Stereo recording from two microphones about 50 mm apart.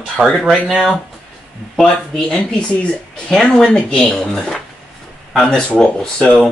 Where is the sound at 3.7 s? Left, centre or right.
Left.